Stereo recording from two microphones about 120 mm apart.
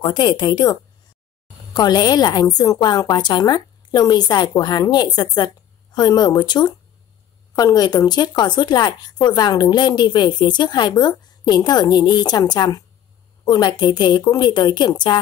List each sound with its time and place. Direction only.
0.0 s speech: 40° left (ahead or behind)